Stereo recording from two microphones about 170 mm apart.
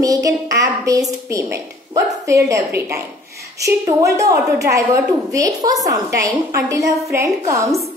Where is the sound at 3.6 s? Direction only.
20° right (ahead or behind).